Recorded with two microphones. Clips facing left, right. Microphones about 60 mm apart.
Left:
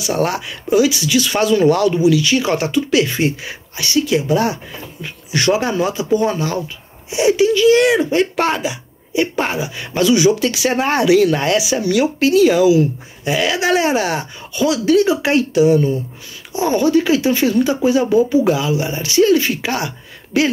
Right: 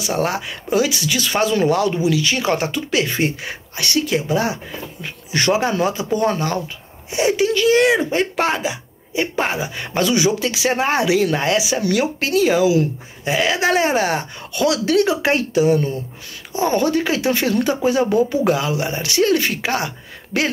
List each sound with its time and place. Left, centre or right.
0.1 s speech: right
4.1 s speech: right
7.7 s speech: right
8.4 s speech: centre
8.6 s a sound: right
9.6 s speech: right
11.8 s speech: right
14.5 s speech: right
15.2 s speech: right